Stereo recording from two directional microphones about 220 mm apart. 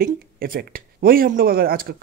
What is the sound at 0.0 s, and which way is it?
Speech, 40° right (ahead or behind).